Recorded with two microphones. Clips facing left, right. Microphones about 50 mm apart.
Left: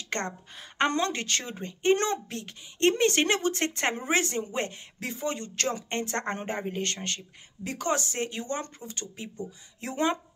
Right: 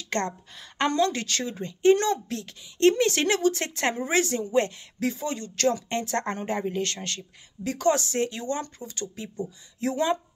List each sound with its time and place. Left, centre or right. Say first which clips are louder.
0.1 s a woman's voice: right 4 dB; left